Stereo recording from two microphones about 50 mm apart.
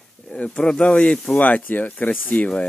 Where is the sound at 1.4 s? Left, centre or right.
Left.